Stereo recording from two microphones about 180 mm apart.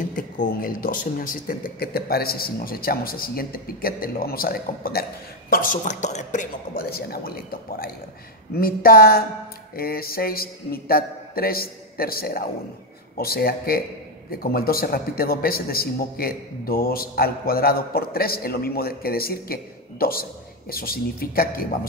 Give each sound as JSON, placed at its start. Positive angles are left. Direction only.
{"t": 0.0, "sound": "a man's voice", "side_deg": 50}